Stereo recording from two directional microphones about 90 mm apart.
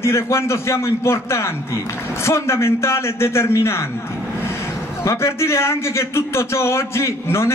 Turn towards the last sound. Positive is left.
turn(degrees=30)  # may be behind; listen again after turning